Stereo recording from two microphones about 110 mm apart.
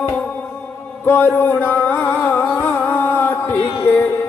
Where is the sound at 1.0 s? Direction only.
20° left (ahead or behind).